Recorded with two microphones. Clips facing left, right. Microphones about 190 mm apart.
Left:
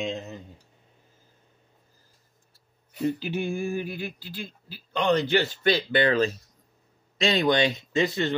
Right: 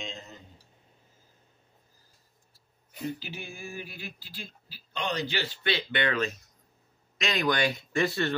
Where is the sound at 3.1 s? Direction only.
55° left (ahead or behind).